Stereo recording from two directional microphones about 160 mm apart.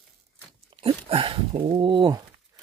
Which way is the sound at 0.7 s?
35° right (ahead or behind).